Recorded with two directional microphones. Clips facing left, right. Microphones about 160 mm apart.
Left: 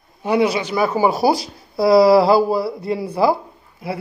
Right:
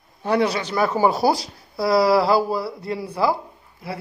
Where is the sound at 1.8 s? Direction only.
20° left (ahead or behind).